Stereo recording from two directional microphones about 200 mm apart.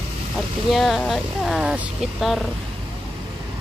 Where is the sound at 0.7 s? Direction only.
Centre (ahead or behind).